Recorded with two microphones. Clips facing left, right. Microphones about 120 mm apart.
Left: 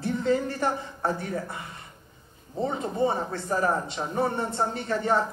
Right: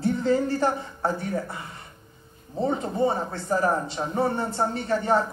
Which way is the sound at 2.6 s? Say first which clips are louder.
Right 2 dB; 25° right (ahead or behind).